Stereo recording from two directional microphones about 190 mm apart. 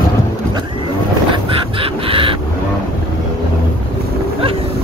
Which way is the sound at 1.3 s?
30° right (ahead or behind).